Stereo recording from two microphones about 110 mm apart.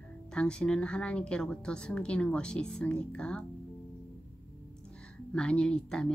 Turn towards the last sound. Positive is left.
turn(degrees=5)  # may be behind; listen again after turning